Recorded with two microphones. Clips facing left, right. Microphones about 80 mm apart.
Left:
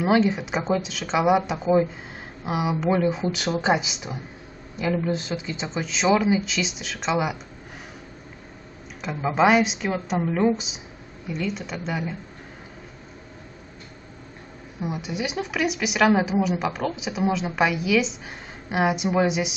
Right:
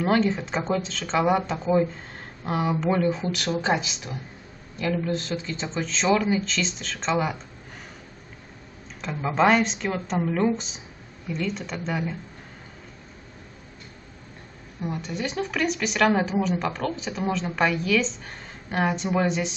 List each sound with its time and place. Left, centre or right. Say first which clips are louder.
0.0 s a woman's voice: left 2 dB; centre
9.0 s a woman's voice: left 1 dB; centre
14.8 s a woman's voice: left 1 dB; centre